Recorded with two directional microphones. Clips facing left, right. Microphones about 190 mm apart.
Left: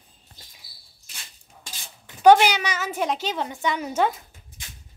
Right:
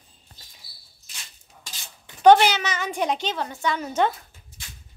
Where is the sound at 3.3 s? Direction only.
15° left (ahead or behind).